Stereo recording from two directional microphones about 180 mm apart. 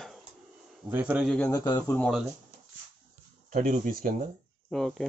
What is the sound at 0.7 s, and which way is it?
Speech, 10° right (ahead or behind).